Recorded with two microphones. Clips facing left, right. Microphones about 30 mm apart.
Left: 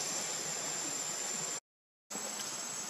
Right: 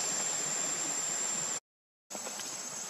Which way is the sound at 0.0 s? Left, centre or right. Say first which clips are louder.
Right 3 dB; centre.